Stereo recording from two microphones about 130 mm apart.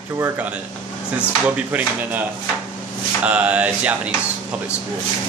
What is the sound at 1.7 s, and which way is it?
Speech, 15° right (ahead or behind).